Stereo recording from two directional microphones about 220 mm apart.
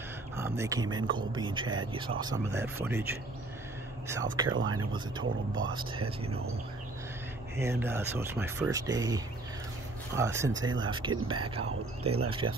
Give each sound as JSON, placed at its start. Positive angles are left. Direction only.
{"t": 0.4, "sound": "speech", "side_deg": -15}
{"t": 2.2, "sound": "speech", "side_deg": -10}
{"t": 4.5, "sound": "speech", "side_deg": -75}
{"t": 5.7, "sound": "speech", "side_deg": -20}
{"t": 7.5, "sound": "speech", "side_deg": -10}